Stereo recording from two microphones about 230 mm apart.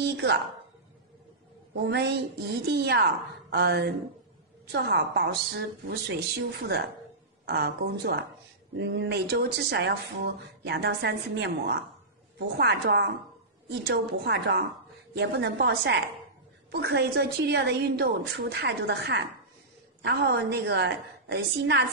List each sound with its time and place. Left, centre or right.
0.0 s a woman's voice: right
1.9 s speech: right
7.4 s speech: right